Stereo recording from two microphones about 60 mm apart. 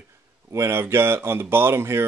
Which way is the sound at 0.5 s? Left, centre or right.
Right.